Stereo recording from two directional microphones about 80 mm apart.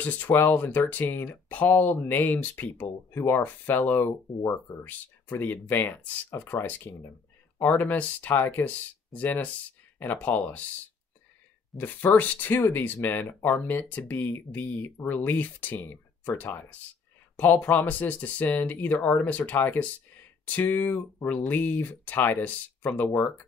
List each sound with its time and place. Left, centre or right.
0.0 s speech: left
4.8 s speech: left
11.7 s speech: left